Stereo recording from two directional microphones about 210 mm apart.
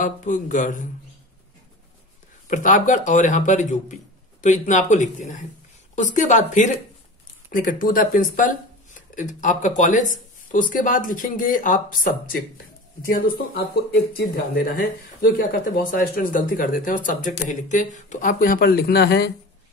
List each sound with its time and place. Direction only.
0.0 s speech: 40° left (ahead or behind)
2.4 s speech: 35° left (ahead or behind)
13.9 s speech: 50° left (ahead or behind)